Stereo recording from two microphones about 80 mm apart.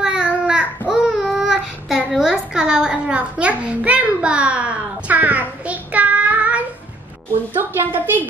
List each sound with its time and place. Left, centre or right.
0.0 s babbling: centre
0.5 s child singing: centre
7.5 s a woman's voice: right